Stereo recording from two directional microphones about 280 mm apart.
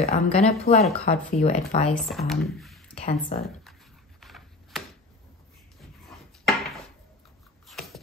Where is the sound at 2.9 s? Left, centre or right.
Left.